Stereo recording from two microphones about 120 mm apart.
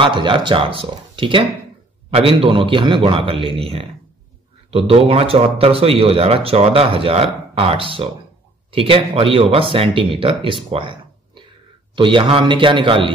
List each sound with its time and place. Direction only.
0.0 s speech: 45° right (ahead or behind)